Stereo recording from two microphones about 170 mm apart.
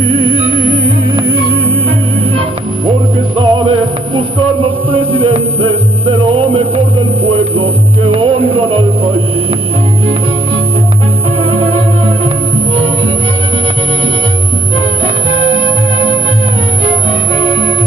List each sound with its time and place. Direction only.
0.2 s music: 35° right (ahead or behind)
3.3 s music: 35° right (ahead or behind)
5.2 s music: 30° right (ahead or behind)
11.5 s music: 35° right (ahead or behind)
15.3 s music: 35° right (ahead or behind)